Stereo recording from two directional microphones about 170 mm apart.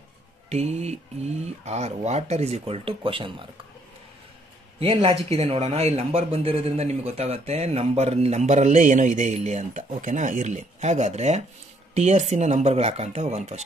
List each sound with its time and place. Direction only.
0.5 s speech: 40° right (ahead or behind)
4.9 s speech: 35° right (ahead or behind)